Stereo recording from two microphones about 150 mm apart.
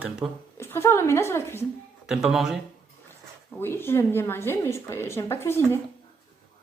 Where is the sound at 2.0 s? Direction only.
5° right (ahead or behind).